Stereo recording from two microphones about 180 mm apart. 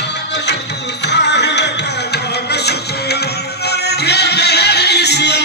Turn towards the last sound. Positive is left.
turn(degrees=70)  # may be behind; listen again after turning